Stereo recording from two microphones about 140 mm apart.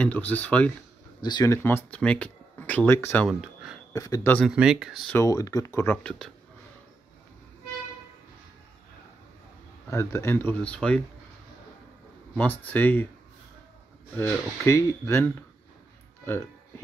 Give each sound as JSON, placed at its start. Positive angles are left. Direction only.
{"t": 0.3, "sound": "speech", "side_deg": 10}
{"t": 1.2, "sound": "speech", "side_deg": 25}
{"t": 3.3, "sound": "speech", "side_deg": -5}
{"t": 3.9, "sound": "speech", "side_deg": 25}
{"t": 4.5, "sound": "speech", "side_deg": -5}
{"t": 5.1, "sound": "speech", "side_deg": 20}
{"t": 9.8, "sound": "speech", "side_deg": 20}
{"t": 12.4, "sound": "speech", "side_deg": 10}
{"t": 14.1, "sound": "speech", "side_deg": 20}